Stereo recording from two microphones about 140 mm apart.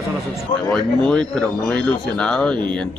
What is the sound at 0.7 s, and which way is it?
A man's voice, 5° left (ahead or behind).